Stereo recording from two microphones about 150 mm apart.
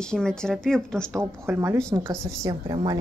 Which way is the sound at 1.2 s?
15° right (ahead or behind).